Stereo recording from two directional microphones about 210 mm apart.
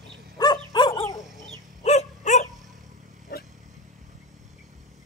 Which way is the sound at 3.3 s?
45° left (ahead or behind).